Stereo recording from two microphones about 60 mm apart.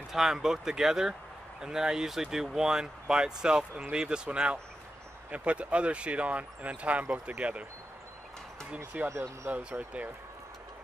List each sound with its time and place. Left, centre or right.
0.1 s speech: centre; by 7.6 s right
8.6 s speech: right
9.0 s speech: right